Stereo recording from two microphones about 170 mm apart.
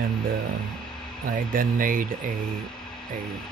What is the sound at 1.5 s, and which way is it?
Speech, 55° right (ahead or behind).